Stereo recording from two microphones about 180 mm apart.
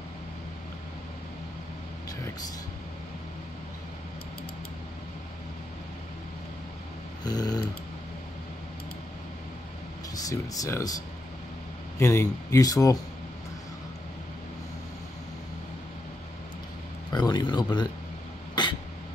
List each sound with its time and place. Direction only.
7.2 s snoring: 20° left (ahead or behind)
10.1 s speech: 20° left (ahead or behind)
12.0 s speech: 15° left (ahead or behind)
17.1 s speech: 25° left (ahead or behind)
18.5 s cough: 25° left (ahead or behind)